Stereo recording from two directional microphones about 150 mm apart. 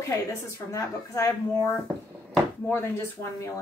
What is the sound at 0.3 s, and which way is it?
Speech, 20° left (ahead or behind).